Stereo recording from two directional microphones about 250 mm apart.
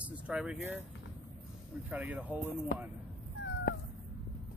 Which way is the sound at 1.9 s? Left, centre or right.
Centre.